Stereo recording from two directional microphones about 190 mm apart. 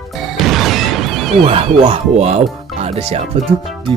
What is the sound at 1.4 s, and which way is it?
Speech, 30° right (ahead or behind).